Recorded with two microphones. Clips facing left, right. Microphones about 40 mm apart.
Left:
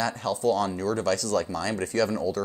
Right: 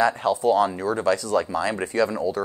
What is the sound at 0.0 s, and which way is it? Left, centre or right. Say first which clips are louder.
Speech: right 6 dB; right.